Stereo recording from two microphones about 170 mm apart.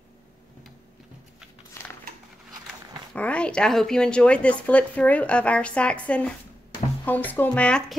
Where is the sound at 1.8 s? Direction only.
15° left (ahead or behind).